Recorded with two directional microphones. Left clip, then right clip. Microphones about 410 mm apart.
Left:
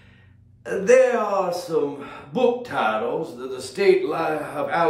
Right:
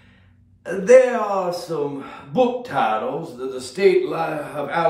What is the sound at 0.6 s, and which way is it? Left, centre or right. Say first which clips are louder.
A man's voice: right 3 dB; centre.